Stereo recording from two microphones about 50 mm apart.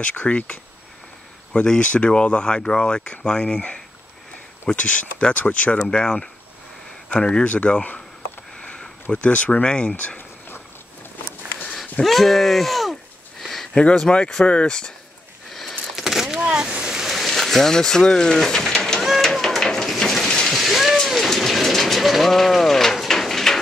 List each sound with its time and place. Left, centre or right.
0.3 s speech: left
5.8 s speech: centre
7.4 s speech: left
8.5 s sniff: left
9.1 s speech: left
11.7 s speech: centre
13.4 s a sound: centre
13.7 s speech: centre
16.0 s a sound: centre
16.3 s a sound: centre
17.1 s speech: centre
19.0 s a sound: centre